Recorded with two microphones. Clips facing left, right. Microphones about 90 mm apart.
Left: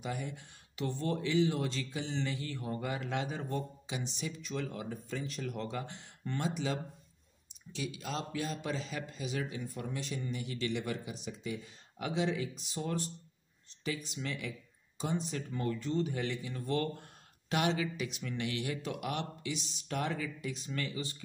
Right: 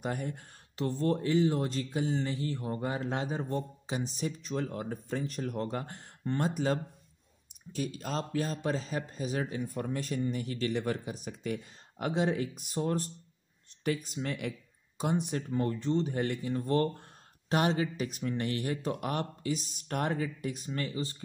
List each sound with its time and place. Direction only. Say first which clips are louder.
0.0 s speech: right 4 dB; 45° right (ahead or behind)
15.5 s speech: right 4 dB; 35° right (ahead or behind)